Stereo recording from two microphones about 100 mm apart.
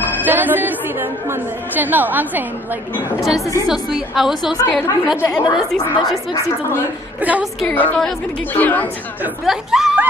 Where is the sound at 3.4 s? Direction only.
35° left (ahead or behind).